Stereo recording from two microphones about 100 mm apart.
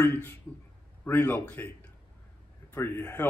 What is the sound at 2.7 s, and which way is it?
Speech, 25° left (ahead or behind).